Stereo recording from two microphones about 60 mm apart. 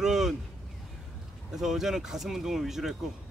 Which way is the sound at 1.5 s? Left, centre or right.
Centre.